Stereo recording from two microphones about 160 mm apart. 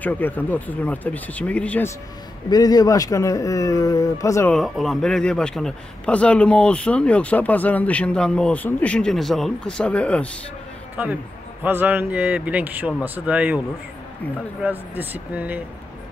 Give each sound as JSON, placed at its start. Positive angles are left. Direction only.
{"t": 0.0, "sound": "a man's voice", "side_deg": 10}
{"t": 2.5, "sound": "speech", "side_deg": 25}
{"t": 4.5, "sound": "a man's voice", "side_deg": 0}
{"t": 11.6, "sound": "speech", "side_deg": -10}
{"t": 14.6, "sound": "speech", "side_deg": -10}